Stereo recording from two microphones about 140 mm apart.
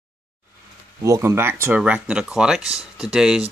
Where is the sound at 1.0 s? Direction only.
20° right (ahead or behind).